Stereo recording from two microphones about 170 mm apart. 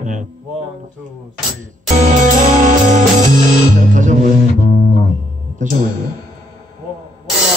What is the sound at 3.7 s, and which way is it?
Speech, 50° right (ahead or behind).